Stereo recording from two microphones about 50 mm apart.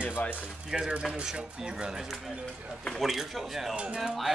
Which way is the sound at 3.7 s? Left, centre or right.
Right.